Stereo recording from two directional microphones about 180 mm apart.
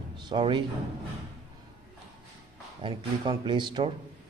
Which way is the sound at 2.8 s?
25° right (ahead or behind).